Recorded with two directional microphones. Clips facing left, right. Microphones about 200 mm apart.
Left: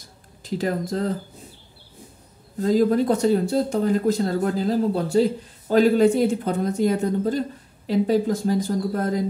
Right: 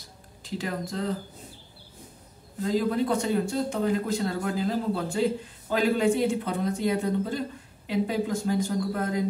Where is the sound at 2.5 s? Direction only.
45° left (ahead or behind).